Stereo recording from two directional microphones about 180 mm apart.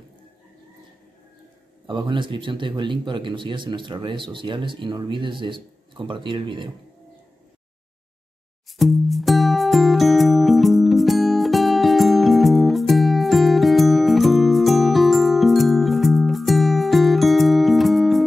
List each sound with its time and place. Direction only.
1.9 s speech: 25° right (ahead or behind)
8.7 s music: centre (ahead or behind)